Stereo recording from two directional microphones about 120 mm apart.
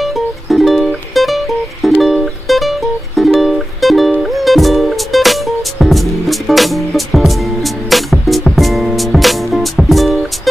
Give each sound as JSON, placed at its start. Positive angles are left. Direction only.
{"t": 0.0, "sound": "music", "side_deg": 0}